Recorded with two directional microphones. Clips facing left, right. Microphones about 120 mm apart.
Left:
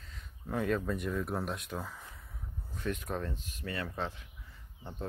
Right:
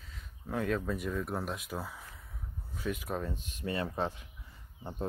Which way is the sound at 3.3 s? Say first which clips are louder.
Right 4 dB; 20° right (ahead or behind).